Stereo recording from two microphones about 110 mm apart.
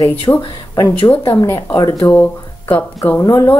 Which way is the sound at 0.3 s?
30° left (ahead or behind).